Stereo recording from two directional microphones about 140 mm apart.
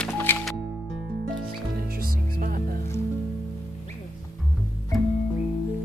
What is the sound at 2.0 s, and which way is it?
Music, 85° right.